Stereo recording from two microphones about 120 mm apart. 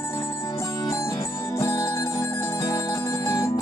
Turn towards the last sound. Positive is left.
turn(degrees=20)  # may be behind; listen again after turning